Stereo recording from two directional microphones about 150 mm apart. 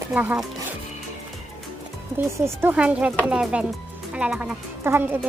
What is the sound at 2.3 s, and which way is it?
Speech, 20° right (ahead or behind).